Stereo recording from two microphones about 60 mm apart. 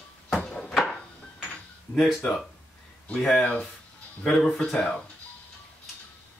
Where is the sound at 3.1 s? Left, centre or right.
Centre.